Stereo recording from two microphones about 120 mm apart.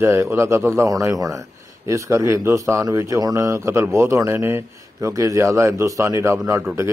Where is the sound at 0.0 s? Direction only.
20° right (ahead or behind).